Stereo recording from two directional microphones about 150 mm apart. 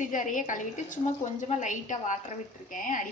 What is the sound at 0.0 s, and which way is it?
A woman's voice, 60° left (ahead or behind).